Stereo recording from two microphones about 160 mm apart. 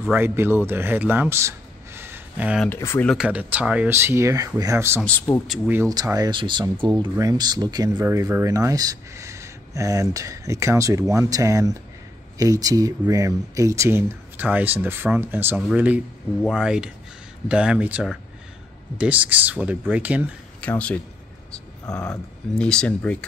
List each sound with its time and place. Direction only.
0.1 s speech: 15° right (ahead or behind)
2.0 s a sound: 15° right (ahead or behind)
2.6 s speech: 15° left (ahead or behind)
3.1 s speech: 5° right (ahead or behind)
5.3 s speech: 5° right (ahead or behind)
5.7 s speech: 20° right (ahead or behind)
8.0 s speech: 15° right (ahead or behind)
20.6 s speech: 10° left (ahead or behind)
22.6 s speech: 5° left (ahead or behind)